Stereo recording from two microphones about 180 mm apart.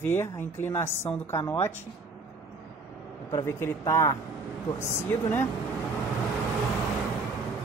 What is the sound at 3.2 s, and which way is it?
A man's voice, 15° left (ahead or behind).